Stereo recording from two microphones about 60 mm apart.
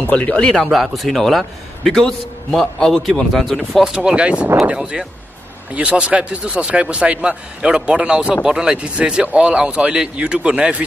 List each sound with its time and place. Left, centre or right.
0.0 s speech: left
0.7 s a man's voice: centre